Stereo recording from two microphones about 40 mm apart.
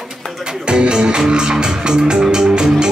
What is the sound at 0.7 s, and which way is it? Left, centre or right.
Music, right.